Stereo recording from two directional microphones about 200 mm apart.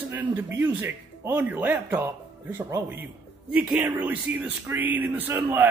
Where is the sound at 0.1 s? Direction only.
10° right (ahead or behind).